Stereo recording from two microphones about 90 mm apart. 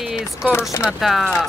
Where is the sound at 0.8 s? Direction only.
Centre (ahead or behind).